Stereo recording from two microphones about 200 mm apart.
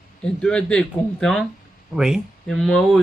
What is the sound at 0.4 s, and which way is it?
Speech, 5° left (ahead or behind).